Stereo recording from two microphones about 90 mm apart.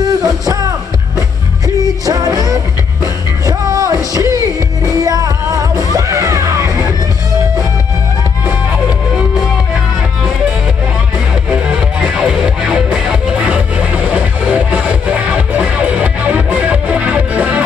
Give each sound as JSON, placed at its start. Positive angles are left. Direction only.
{"t": 0.0, "sound": "music", "side_deg": -40}
{"t": 2.0, "sound": "music", "side_deg": -40}
{"t": 11.5, "sound": "music", "side_deg": -15}